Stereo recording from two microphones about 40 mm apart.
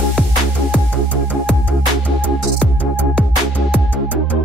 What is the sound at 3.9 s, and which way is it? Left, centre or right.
Music, left.